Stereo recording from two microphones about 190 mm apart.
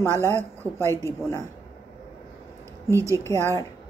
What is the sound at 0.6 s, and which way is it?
Speech, 10° left (ahead or behind).